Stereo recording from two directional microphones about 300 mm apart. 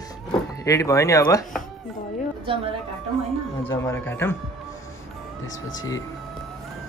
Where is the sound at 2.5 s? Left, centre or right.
Centre.